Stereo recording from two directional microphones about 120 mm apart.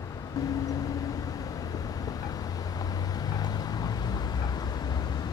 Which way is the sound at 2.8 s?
30° left (ahead or behind).